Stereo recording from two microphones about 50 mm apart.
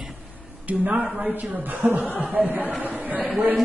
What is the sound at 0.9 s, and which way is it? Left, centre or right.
Speech, centre.